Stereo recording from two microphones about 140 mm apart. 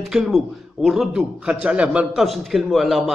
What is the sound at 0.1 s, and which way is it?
A man's voice, centre (ahead or behind).